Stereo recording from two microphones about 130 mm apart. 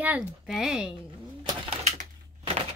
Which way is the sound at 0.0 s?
10° right (ahead or behind).